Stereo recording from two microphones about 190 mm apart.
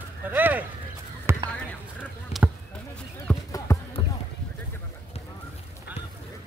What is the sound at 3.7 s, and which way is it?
Music, 15° left (ahead or behind).